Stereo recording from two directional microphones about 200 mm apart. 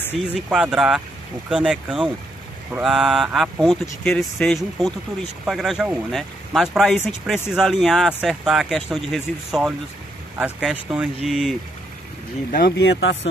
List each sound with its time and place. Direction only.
0.2 s speech: 5° right (ahead or behind)
12.5 s speech: 55° left (ahead or behind)